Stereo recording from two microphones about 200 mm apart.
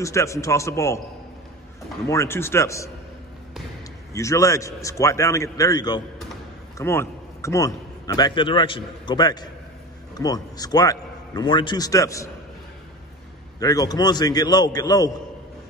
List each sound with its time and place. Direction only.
0.0 s a man's voice: 15° left (ahead or behind)
2.0 s a man's voice: 15° left (ahead or behind)
4.1 s a man's voice: 15° left (ahead or behind)
13.6 s a man's voice: 20° left (ahead or behind)